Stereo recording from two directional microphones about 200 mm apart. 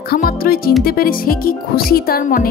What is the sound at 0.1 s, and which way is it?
Speech, 50° left (ahead or behind).